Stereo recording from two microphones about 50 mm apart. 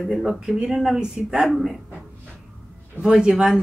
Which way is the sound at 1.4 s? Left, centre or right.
Centre.